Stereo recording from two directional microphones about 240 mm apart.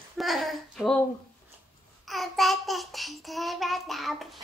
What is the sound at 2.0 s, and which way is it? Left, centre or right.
Child singing, centre.